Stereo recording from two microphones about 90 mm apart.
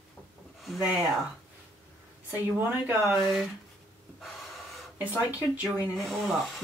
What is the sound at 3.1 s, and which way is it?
Speech, 5° right (ahead or behind).